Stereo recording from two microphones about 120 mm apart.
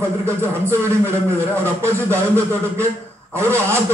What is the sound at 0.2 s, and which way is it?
A man's voice, 20° right (ahead or behind).